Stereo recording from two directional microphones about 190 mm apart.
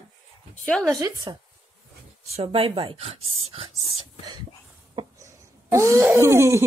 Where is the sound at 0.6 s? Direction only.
5° left (ahead or behind).